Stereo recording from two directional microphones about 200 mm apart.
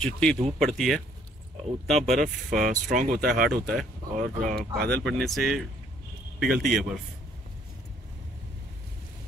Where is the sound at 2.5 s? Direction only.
40° right (ahead or behind).